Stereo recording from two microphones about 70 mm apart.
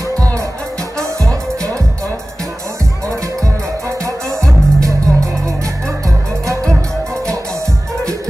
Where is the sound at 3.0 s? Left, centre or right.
Right.